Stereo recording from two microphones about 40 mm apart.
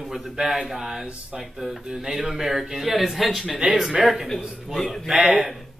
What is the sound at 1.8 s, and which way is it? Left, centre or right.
Speech, centre.